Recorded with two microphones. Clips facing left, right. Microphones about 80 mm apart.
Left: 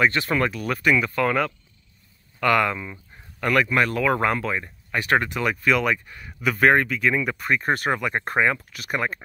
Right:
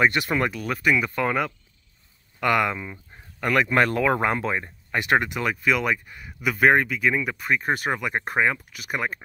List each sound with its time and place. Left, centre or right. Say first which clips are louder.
0.0 s speech: even; centre
0.5 s speech: left 1 dB; centre
3.6 s speech: right 1 dB; right; by 5.4 s centre
5.4 s speech: left 2 dB; centre